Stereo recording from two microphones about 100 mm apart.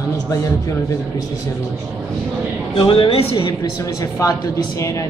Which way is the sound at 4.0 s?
35° left (ahead or behind).